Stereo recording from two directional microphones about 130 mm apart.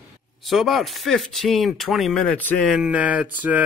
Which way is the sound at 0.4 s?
Centre (ahead or behind).